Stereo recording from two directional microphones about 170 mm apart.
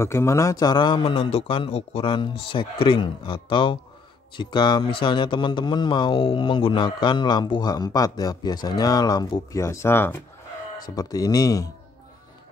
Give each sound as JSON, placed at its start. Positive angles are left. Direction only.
{"t": 0.0, "sound": "speech", "side_deg": 15}